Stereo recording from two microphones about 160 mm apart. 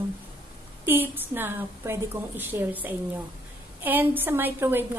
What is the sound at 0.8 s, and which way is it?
A woman's voice, 10° right (ahead or behind).